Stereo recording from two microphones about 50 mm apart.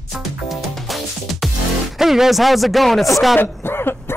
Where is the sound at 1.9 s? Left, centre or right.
Centre.